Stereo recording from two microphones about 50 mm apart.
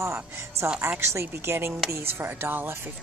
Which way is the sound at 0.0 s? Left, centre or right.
Right.